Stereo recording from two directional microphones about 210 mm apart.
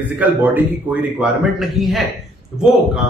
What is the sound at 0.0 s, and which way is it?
A man's voice, 10° right (ahead or behind).